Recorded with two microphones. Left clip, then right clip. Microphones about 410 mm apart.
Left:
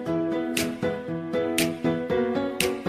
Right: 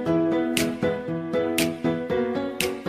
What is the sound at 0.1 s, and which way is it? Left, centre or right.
Music, right.